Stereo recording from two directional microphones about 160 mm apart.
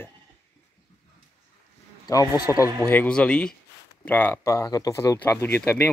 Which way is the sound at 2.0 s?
25° left (ahead or behind).